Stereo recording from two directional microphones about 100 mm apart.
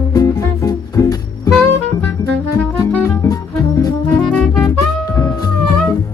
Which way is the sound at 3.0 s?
35° left (ahead or behind).